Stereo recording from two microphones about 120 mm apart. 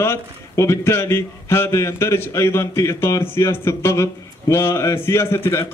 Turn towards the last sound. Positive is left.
turn(degrees=25)  # may be behind; listen again after turning